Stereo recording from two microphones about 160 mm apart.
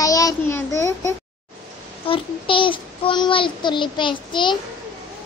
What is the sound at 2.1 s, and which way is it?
A child's voice, 35° left (ahead or behind).